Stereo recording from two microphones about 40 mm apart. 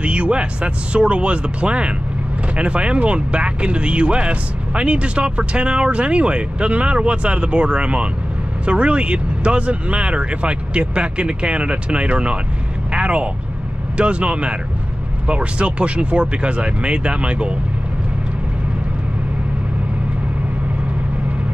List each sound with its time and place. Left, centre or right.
0.0 s speech: right